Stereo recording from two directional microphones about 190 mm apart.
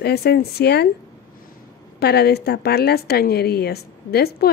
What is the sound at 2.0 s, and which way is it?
Speech, 60° left (ahead or behind).